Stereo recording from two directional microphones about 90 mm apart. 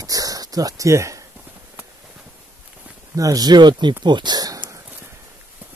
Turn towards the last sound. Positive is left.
turn(degrees=-45)  # may be behind; listen again after turning